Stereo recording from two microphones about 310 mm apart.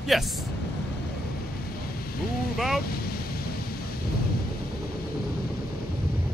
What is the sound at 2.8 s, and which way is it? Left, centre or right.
Vehicle, left.